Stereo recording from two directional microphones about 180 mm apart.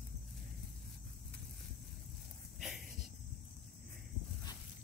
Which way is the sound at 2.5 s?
Centre (ahead or behind).